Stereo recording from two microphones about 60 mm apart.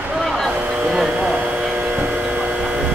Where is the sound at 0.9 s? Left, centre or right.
Centre.